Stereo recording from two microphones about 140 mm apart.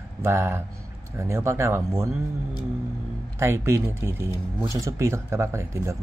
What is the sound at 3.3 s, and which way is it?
A man's voice, 20° right (ahead or behind).